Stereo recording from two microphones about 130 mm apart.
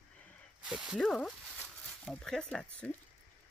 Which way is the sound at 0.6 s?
5° right (ahead or behind).